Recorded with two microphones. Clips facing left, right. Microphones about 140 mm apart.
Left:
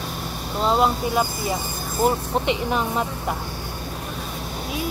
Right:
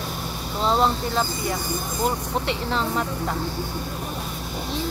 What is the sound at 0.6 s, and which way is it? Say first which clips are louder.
Speech: left 1 dB; 5° left (ahead or behind).